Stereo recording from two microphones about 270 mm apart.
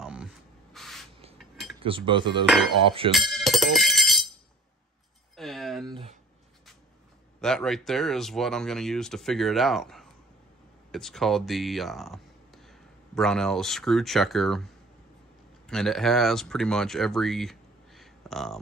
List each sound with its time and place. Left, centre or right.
0.0 s sanding: centre
0.7 s spray: centre
1.4 s cutlery: centre
1.8 s speech: centre
2.4 s speech: centre
3.1 s music: centre
5.3 s a sound: centre
5.9 s a sound: centre
7.3 s speech: centre
15.7 s speech: centre